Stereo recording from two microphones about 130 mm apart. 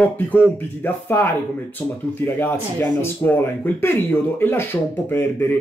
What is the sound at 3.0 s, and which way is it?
Speech, 15° left (ahead or behind).